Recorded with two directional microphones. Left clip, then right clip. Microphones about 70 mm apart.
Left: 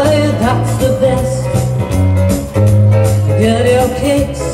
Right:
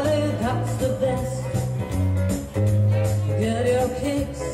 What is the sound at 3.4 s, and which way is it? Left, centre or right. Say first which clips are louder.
Music: left 10 dB; centre.